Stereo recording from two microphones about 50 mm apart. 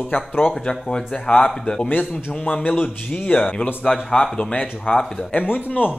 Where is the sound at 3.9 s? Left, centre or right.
Centre.